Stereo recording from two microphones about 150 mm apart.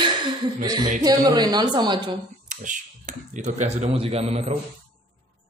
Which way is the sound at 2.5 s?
60° right (ahead or behind).